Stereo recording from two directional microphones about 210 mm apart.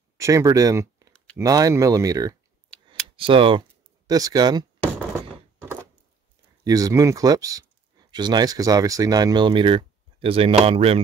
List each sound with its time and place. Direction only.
0.2 s speech: 15° right (ahead or behind)
6.6 s speech: 15° right (ahead or behind)